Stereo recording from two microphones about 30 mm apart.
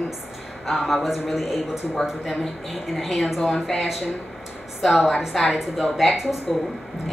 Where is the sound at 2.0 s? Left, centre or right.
Left.